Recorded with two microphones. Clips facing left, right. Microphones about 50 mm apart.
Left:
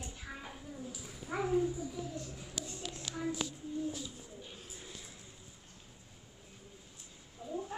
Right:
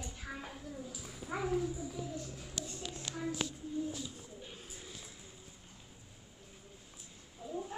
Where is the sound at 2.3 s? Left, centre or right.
Centre.